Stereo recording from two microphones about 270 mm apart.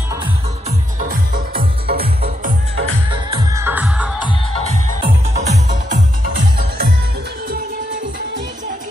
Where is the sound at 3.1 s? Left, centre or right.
Centre.